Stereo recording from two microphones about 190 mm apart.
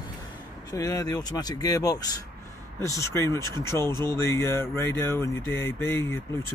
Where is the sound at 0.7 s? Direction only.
20° left (ahead or behind).